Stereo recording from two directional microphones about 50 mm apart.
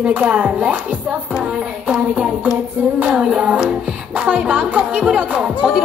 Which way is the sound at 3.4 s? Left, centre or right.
Right.